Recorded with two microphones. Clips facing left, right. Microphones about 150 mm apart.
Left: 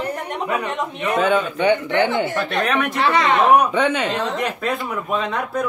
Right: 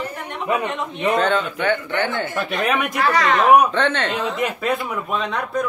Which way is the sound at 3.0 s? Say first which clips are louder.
Left 1 dB; 25° left (ahead or behind).